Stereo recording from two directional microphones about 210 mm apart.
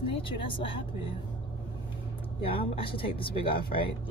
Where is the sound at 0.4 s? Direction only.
25° left (ahead or behind).